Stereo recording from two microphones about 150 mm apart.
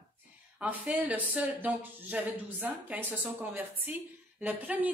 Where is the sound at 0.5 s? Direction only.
5° right (ahead or behind).